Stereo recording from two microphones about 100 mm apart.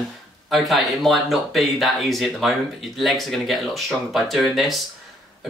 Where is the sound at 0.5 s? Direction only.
Centre (ahead or behind).